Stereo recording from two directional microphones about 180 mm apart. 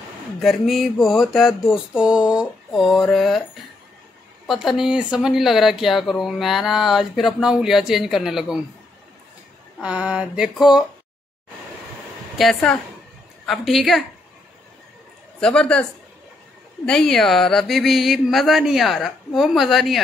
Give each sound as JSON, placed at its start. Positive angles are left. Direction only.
{"t": 0.4, "sound": "speech", "side_deg": 0}
{"t": 4.5, "sound": "speech", "side_deg": 0}
{"t": 9.8, "sound": "speech", "side_deg": -5}
{"t": 12.4, "sound": "speech", "side_deg": 0}
{"t": 15.4, "sound": "speech", "side_deg": 5}
{"t": 16.8, "sound": "speech", "side_deg": 5}